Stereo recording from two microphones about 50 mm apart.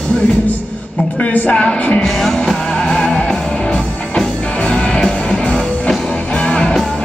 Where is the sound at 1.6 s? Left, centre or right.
Centre.